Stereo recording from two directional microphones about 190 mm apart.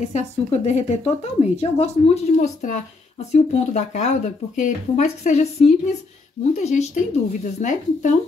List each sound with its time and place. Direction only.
0.0 s a woman's voice: 35° left (ahead or behind)